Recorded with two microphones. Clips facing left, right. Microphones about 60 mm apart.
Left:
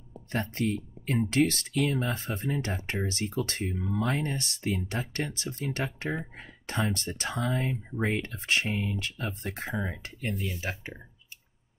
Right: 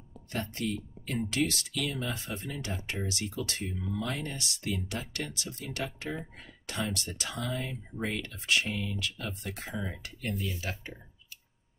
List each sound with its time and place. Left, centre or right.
0.3 s speech: left
10.3 s speech: centre
10.6 s speech: left